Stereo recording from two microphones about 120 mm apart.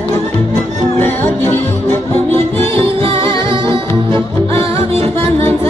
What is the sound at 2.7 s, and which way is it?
Music, 50° right (ahead or behind).